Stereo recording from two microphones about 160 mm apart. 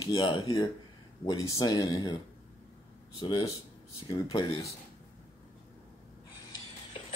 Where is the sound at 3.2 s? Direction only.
25° left (ahead or behind).